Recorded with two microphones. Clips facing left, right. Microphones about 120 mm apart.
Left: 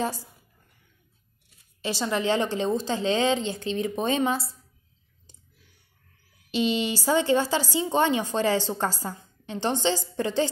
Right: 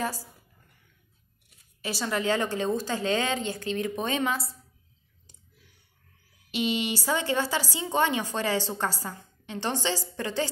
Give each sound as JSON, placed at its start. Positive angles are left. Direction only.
{"t": 0.0, "sound": "a woman's voice", "side_deg": 25}
{"t": 1.8, "sound": "a woman's voice", "side_deg": 25}
{"t": 6.5, "sound": "a woman's voice", "side_deg": 30}